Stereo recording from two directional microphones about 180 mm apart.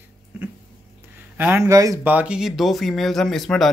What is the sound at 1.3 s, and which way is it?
Speech, 10° right (ahead or behind).